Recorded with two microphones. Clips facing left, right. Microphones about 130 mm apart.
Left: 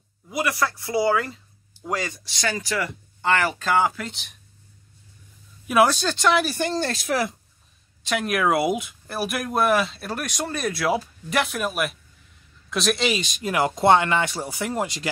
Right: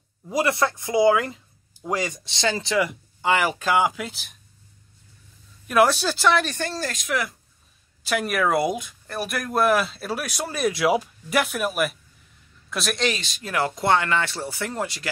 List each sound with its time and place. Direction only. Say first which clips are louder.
0.3 s speech: right 3 dB; 30° right (ahead or behind); by 4.4 s 5° right (ahead or behind)
5.7 s speech: even; centre (ahead or behind)
6.6 s speech: left 4 dB; 20° left (ahead or behind)
6.9 s speech: left 3 dB; 30° left (ahead or behind)
8.0 s speech: even; 5° right (ahead or behind); by 15.0 s 20° left (ahead or behind)